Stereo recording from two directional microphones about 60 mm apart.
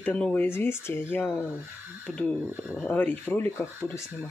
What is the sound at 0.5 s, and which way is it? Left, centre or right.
Speech, left.